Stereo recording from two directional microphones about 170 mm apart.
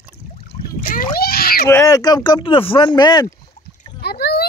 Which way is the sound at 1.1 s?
65° left (ahead or behind).